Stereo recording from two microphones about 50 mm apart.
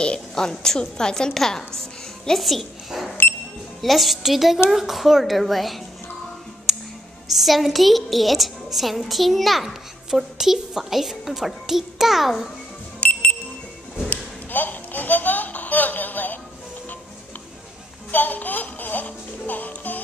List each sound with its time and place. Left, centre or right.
0.0 s a woman's voice: centre
3.8 s a woman's voice: centre
7.2 s a woman's voice: centre
13.0 s music: left
14.0 s a sound: left
18.1 s music: left